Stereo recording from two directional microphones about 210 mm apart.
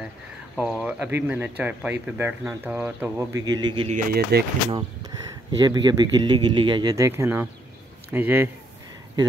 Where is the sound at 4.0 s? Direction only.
45° right (ahead or behind).